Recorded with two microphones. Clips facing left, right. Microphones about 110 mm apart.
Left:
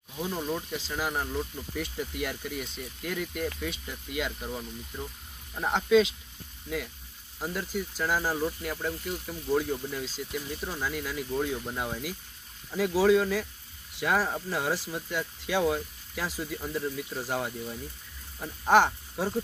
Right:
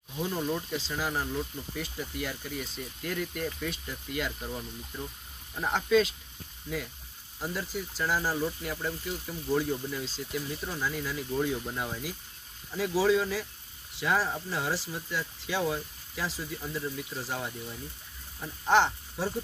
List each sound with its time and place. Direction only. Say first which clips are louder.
0.1 s speech: right 1 dB; 5° left (ahead or behind)
7.3 s speech: left 2 dB; 5° left (ahead or behind)
13.1 s speech: left 3 dB; 5° right (ahead or behind)
13.9 s speech: left 1 dB; 15° left (ahead or behind)